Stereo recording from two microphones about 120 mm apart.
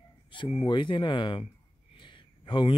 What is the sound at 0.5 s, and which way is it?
A man's voice, 45° left (ahead or behind).